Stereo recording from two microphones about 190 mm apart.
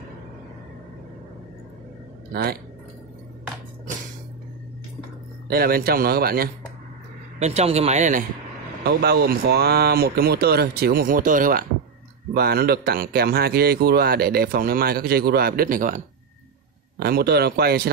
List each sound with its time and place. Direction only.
5.5 s speech: 50° right (ahead or behind)
7.3 s speech: 35° right (ahead or behind)
8.8 s speech: 55° right (ahead or behind)
12.4 s speech: 55° right (ahead or behind)
17.0 s speech: 55° right (ahead or behind)